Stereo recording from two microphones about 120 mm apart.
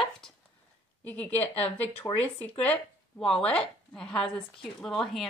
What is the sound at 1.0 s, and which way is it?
Speech, 15° left (ahead or behind).